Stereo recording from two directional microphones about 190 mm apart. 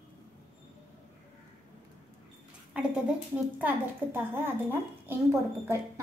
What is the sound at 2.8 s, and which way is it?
A woman's voice, 5° right (ahead or behind).